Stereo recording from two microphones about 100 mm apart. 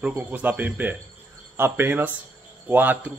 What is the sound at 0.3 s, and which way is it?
A man's voice, 20° right (ahead or behind).